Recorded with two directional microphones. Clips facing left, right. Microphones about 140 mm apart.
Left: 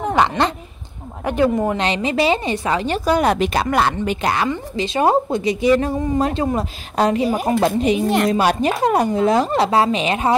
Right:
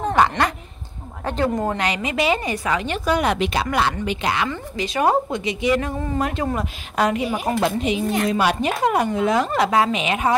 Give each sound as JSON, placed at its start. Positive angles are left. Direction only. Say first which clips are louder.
{"t": 0.0, "sound": "speech", "louder": "left 1 dB", "side_deg": 15}
{"t": 1.8, "sound": "a woman's voice", "louder": "left 4 dB", "side_deg": 30}
{"t": 4.5, "sound": "a woman's voice", "louder": "left 4 dB", "side_deg": 25}